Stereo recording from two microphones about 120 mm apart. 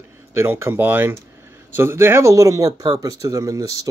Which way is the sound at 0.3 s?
20° right (ahead or behind).